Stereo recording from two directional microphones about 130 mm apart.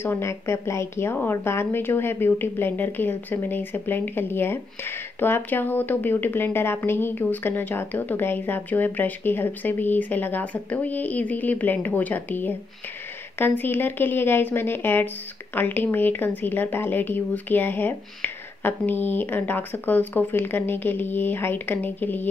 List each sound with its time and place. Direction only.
0.0 s a woman's voice: 20° left (ahead or behind)